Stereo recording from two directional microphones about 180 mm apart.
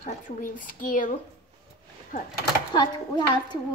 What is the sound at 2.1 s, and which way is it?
Speech, 50° left (ahead or behind).